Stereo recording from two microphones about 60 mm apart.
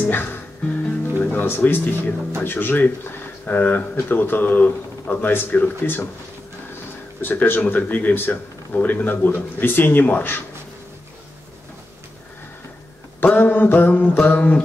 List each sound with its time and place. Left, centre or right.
0.0 s music: left
2.4 s speech: left
7.2 s speech: left
13.2 s speech: left
14.2 s music: left